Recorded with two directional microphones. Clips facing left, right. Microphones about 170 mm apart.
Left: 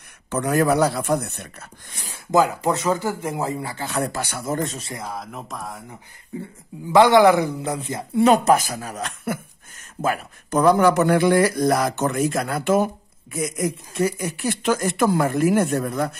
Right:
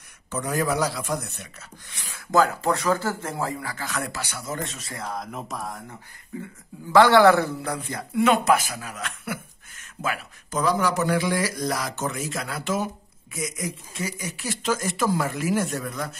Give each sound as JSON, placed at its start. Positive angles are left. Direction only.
{"t": 0.3, "sound": "speech", "side_deg": 65}
{"t": 2.1, "sound": "a man's voice", "side_deg": 15}
{"t": 4.1, "sound": "speech", "side_deg": 55}
{"t": 4.6, "sound": "a man's voice", "side_deg": 40}
{"t": 5.0, "sound": "a sound", "side_deg": 0}
{"t": 6.3, "sound": "a man's voice", "side_deg": 30}
{"t": 6.9, "sound": "a man's voice", "side_deg": 20}